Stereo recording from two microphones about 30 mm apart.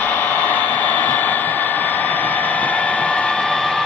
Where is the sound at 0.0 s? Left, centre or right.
Left.